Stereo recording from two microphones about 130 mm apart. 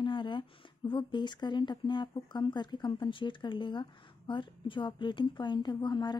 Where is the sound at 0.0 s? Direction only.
35° left (ahead or behind).